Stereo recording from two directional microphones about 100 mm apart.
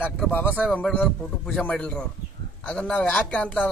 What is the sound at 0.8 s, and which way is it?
A man's voice, 10° left (ahead or behind).